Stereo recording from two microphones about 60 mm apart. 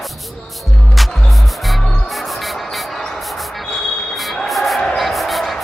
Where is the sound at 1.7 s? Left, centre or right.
Centre.